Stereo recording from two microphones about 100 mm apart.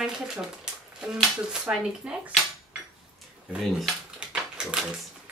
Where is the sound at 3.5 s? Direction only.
5° right (ahead or behind).